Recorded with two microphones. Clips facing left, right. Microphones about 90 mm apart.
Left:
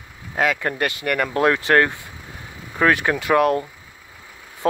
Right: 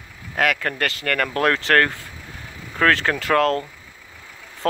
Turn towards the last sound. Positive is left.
turn(degrees=15)  # may be behind; listen again after turning